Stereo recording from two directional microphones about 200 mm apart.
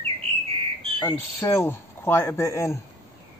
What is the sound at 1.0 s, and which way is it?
Speech, 15° left (ahead or behind).